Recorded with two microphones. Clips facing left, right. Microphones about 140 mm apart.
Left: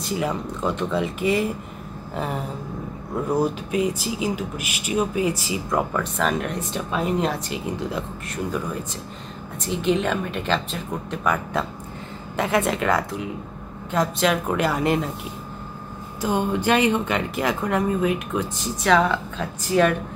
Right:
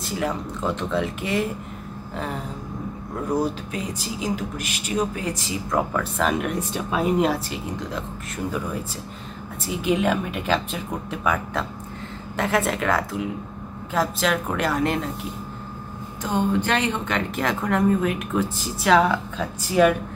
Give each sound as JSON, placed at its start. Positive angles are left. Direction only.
{"t": 0.0, "sound": "speech", "side_deg": 0}
{"t": 3.3, "sound": "speech", "side_deg": 10}
{"t": 16.2, "sound": "speech", "side_deg": 10}